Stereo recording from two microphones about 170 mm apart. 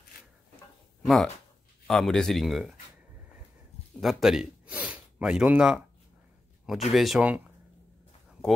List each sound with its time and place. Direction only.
1.0 s speech: centre (ahead or behind)
4.0 s speech: centre (ahead or behind)
6.9 s speech: centre (ahead or behind)
8.3 s a sound: centre (ahead or behind)